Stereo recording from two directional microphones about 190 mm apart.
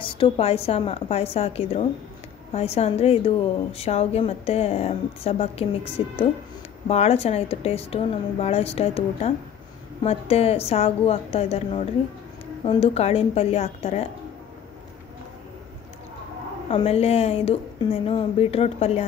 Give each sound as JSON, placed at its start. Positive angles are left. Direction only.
{"t": 0.0, "sound": "a woman's voice", "side_deg": 25}
{"t": 16.6, "sound": "a woman's voice", "side_deg": 30}